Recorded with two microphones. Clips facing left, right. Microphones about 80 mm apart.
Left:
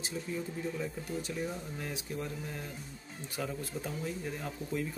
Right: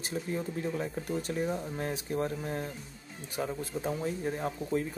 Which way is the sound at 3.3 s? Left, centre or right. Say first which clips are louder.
Right 4 dB; right.